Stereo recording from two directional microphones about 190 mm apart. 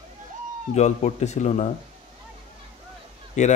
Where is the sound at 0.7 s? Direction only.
35° left (ahead or behind).